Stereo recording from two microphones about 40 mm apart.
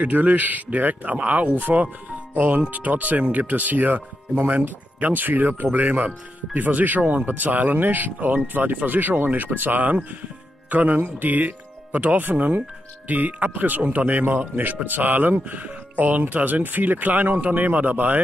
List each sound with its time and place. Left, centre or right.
0.0 s speech: right